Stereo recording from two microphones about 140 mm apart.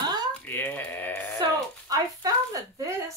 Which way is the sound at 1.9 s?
25° right (ahead or behind).